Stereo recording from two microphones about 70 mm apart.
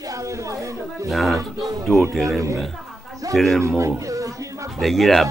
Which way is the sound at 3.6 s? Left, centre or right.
Right.